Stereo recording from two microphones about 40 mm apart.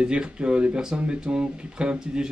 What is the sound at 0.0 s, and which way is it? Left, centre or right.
Speech, right.